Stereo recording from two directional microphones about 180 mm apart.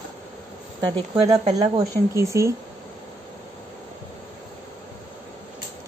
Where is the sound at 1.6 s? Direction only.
20° right (ahead or behind).